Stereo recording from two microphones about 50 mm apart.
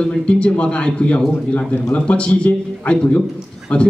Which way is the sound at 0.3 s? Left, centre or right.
Left.